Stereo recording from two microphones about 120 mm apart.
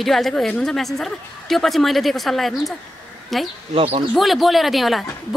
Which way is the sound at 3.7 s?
55° right (ahead or behind).